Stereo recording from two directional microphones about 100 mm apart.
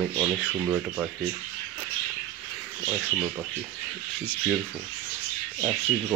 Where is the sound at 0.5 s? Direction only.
15° right (ahead or behind).